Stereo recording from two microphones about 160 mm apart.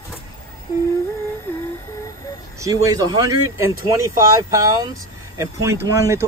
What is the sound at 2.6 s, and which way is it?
Speech, 20° right (ahead or behind).